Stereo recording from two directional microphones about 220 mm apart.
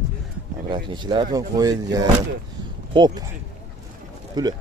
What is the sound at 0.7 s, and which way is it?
Speech, 20° right (ahead or behind).